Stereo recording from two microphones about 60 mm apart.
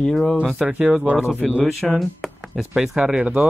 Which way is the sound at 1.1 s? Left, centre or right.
Centre.